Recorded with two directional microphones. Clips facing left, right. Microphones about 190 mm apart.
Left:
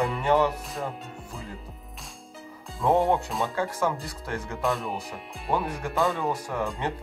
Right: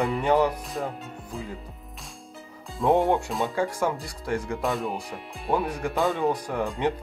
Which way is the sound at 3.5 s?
15° right (ahead or behind).